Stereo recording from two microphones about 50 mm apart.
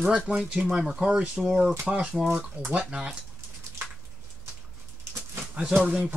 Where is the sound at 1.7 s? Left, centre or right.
Centre.